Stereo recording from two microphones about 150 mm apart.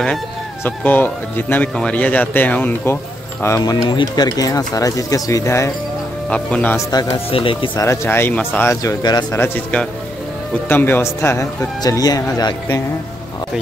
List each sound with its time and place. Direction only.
0.7 s speech: 10° left (ahead or behind)
6.3 s speech: 10° left (ahead or behind)
7.2 s speech: 35° left (ahead or behind)
7.8 s speech: 20° left (ahead or behind)
9.4 s speech: 10° left (ahead or behind); by 12.8 s 25° left (ahead or behind)